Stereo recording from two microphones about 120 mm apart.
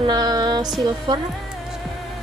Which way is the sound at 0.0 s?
35° right (ahead or behind).